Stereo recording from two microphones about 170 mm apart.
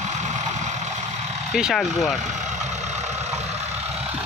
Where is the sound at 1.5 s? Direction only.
Centre (ahead or behind).